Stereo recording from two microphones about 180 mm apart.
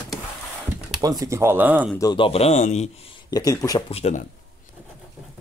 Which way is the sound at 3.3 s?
20° left (ahead or behind).